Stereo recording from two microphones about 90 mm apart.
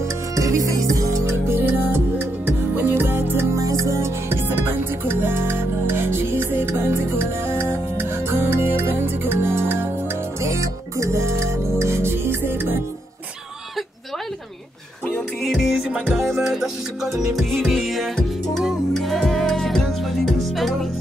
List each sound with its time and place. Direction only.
0.3 s music: 35° right (ahead or behind)
1.5 s music: 20° right (ahead or behind)
3.5 s music: 35° right (ahead or behind)
16.1 s music: centre (ahead or behind)